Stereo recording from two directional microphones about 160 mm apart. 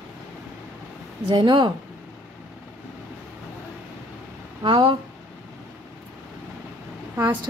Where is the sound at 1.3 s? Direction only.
30° right (ahead or behind).